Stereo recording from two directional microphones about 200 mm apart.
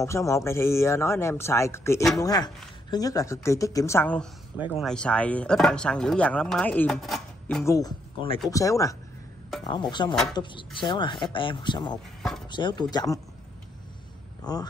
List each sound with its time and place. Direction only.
0.0 s speech: 15° left (ahead or behind)
4.6 s speech: 10° right (ahead or behind)
4.8 s speech: 5° left (ahead or behind)
7.6 s speech: 15° left (ahead or behind)
12.2 s speech: centre (ahead or behind)
12.4 s speech: 25° left (ahead or behind)
14.4 s speech: 20° left (ahead or behind)